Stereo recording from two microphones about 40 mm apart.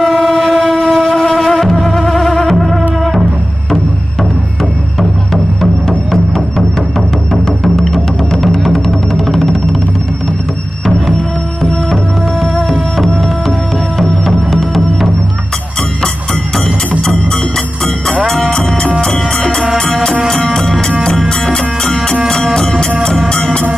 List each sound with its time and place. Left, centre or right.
0.0 s train: centre
3.0 s music: centre
5.3 s music: centre
7.6 s music: centre
11.6 s music: centre
14.2 s music: centre
18.9 s music: centre